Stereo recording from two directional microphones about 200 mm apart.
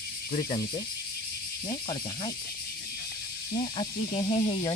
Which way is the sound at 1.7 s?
25° left (ahead or behind).